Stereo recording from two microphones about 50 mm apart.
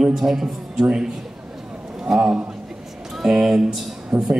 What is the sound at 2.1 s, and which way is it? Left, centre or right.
Speech, right.